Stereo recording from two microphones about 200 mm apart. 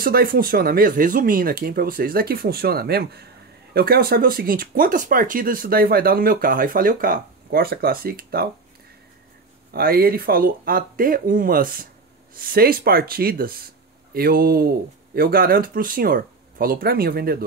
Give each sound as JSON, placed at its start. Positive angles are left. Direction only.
{"t": 0.0, "sound": "speech", "side_deg": -50}
{"t": 9.7, "sound": "speech", "side_deg": -50}